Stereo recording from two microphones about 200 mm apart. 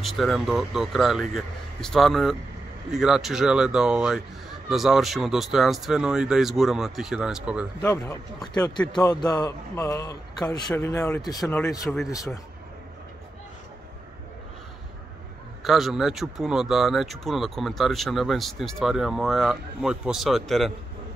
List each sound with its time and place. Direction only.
0.0 s speech: centre (ahead or behind)
8.6 s a man's voice: 15° left (ahead or behind)
15.6 s speech: centre (ahead or behind)